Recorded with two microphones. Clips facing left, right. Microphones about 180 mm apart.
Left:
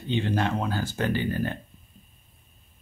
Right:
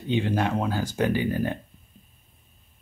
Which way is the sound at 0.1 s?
5° right (ahead or behind).